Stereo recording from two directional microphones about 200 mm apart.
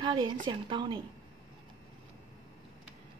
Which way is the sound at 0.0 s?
20° right (ahead or behind).